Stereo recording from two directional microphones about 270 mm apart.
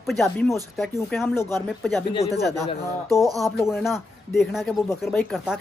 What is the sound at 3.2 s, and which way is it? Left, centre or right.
Speech, centre.